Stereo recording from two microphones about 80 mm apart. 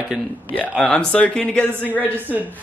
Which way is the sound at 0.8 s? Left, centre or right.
Centre.